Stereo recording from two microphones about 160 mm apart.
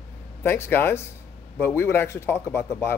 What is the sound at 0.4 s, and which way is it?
A man's voice, 15° left (ahead or behind).